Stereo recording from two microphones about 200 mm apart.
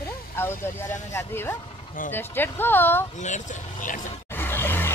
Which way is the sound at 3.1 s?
35° left (ahead or behind).